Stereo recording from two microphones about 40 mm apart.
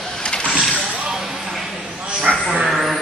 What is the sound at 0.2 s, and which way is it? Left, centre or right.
Vehicle, left.